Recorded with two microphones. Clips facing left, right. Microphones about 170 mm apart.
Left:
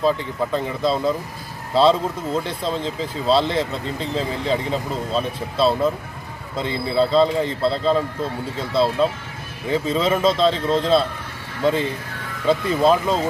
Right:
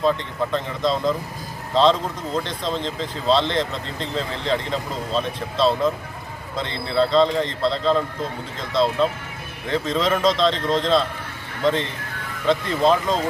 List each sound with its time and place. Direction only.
0.0 s speech: 5° left (ahead or behind)